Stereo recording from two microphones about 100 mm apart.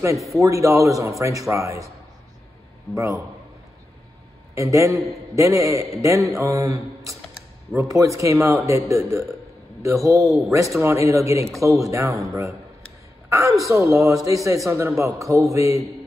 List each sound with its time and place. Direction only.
0.3 s a man's voice: 30° right (ahead or behind)
2.9 s a man's voice: 30° right (ahead or behind)
4.6 s a man's voice: 30° right (ahead or behind)